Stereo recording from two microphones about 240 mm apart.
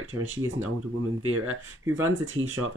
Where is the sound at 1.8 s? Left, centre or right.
Centre.